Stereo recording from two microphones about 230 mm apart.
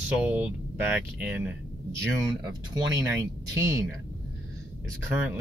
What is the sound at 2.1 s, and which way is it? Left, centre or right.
Speech, centre.